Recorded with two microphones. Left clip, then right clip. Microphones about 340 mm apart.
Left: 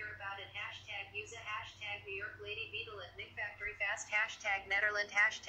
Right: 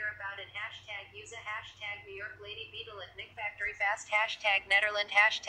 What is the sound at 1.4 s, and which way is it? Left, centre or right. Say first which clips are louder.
A woman's voice: right 7 dB; centre.